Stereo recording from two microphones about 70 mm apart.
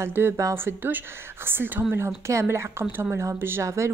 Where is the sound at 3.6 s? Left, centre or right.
Right.